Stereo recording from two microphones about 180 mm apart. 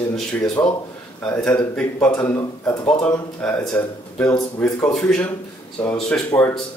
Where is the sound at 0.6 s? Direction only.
15° left (ahead or behind).